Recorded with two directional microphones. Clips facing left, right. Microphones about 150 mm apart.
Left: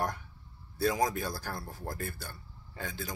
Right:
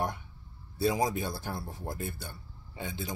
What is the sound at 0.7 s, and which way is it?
Speech, 25° right (ahead or behind).